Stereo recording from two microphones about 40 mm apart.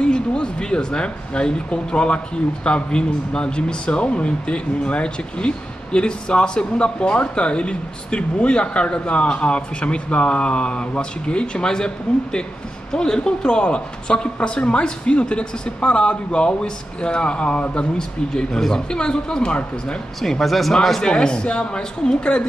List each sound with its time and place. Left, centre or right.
0.0 s speech: left
17.9 s speech: centre
20.2 s speech: centre
21.0 s speech: left